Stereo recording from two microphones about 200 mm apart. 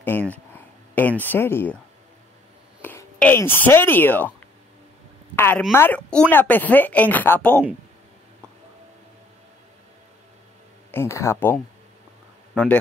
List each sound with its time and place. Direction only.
0.0 s speech: 10° left (ahead or behind)
2.8 s speech: 10° left (ahead or behind)
5.3 s speech: 10° left (ahead or behind)
10.9 s speech: 10° left (ahead or behind)